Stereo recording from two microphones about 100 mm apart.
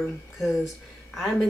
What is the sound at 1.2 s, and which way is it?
Speech, centre (ahead or behind).